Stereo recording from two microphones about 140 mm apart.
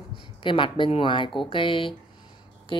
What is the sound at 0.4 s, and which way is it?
Speech, 35° left (ahead or behind).